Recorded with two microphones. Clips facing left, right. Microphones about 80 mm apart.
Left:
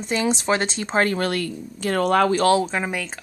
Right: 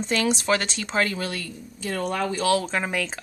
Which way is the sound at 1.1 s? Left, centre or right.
Left.